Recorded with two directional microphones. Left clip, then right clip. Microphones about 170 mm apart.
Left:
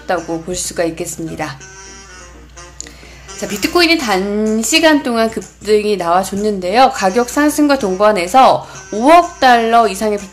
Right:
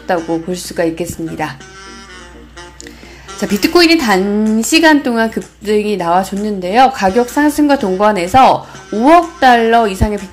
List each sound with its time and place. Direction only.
0.0 s a woman's voice: 10° right (ahead or behind)
3.3 s a woman's voice: 20° right (ahead or behind)